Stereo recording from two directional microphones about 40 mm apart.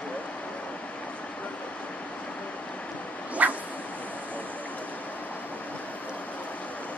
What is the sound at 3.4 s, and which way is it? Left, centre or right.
Dog, right.